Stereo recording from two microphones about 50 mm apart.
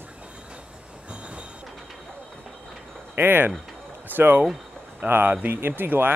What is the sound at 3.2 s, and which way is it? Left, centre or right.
Speech, right.